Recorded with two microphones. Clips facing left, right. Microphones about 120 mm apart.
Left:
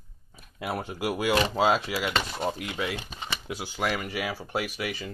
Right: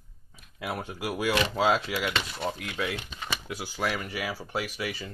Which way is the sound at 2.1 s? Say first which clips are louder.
Left 3 dB; 40° left (ahead or behind).